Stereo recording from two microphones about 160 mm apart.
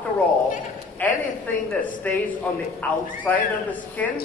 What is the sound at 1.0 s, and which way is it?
A man's voice, 10° left (ahead or behind).